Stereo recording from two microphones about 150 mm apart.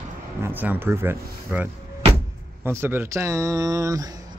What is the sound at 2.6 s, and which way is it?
Speech, 15° right (ahead or behind).